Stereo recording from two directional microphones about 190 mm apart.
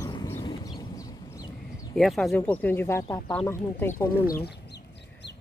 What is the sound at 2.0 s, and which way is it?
Speech, centre (ahead or behind).